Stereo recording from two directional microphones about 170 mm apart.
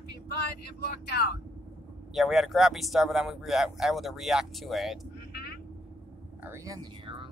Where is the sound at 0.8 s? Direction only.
70° left (ahead or behind).